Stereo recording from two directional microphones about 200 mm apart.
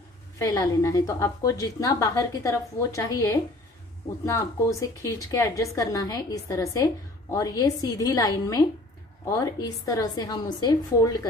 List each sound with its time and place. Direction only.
0.4 s a woman's voice: 15° left (ahead or behind)